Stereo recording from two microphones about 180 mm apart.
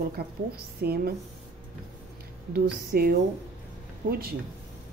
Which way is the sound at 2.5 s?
60° right (ahead or behind).